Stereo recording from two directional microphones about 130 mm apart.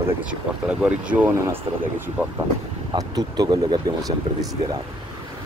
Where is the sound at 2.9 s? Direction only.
30° right (ahead or behind).